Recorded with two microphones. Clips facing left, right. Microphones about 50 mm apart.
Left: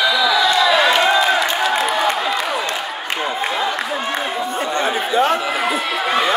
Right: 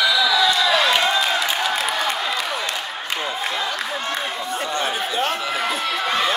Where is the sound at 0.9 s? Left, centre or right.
Centre.